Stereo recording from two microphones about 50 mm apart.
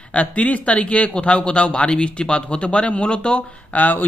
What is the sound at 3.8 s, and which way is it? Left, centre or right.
Speech, left.